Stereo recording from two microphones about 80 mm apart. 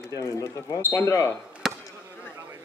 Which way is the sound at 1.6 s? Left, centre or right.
Centre.